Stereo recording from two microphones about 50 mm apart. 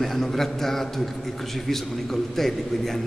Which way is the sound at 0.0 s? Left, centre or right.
Centre.